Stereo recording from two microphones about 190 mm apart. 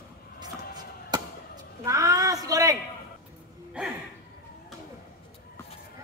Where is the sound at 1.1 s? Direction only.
20° right (ahead or behind).